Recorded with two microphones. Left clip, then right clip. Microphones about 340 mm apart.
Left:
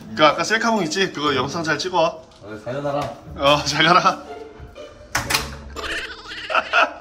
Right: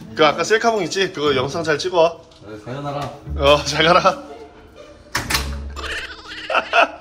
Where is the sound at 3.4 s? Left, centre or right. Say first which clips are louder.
Right 2 dB; centre.